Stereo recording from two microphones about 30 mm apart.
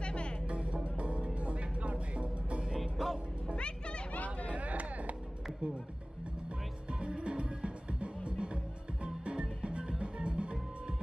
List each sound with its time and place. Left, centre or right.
0.0 s music: left
0.5 s music: right
2.8 s music: centre
3.5 s music: left
4.1 s hubbub: left
4.6 s a sound: right
6.9 s music: right